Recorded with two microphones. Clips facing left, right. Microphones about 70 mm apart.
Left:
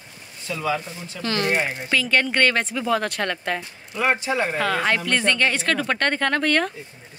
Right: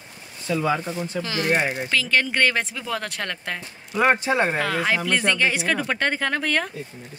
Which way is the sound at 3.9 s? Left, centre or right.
Centre.